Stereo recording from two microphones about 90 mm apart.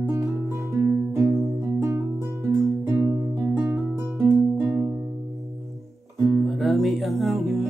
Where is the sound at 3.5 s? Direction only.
15° right (ahead or behind).